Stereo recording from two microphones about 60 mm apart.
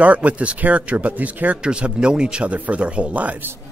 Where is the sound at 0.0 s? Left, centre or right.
Right.